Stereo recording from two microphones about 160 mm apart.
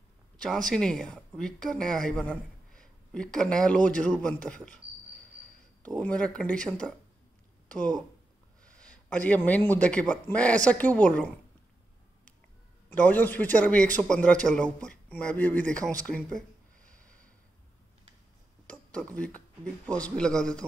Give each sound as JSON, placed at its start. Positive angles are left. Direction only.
{"t": 0.4, "sound": "speech", "side_deg": 0}
{"t": 5.8, "sound": "a man's voice", "side_deg": 5}
{"t": 12.9, "sound": "a man's voice", "side_deg": 10}
{"t": 16.1, "sound": "a sound", "side_deg": 5}
{"t": 18.7, "sound": "speech", "side_deg": 5}